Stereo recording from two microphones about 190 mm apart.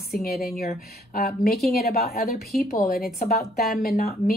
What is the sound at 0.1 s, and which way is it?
Speech, 55° left (ahead or behind).